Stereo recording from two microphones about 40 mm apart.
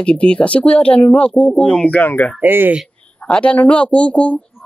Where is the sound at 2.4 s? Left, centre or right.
Right.